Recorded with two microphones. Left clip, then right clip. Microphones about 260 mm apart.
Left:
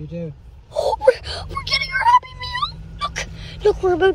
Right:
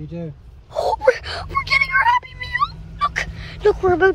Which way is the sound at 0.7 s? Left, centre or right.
Centre.